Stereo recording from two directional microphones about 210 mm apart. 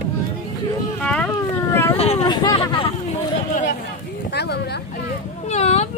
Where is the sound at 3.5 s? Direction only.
40° left (ahead or behind).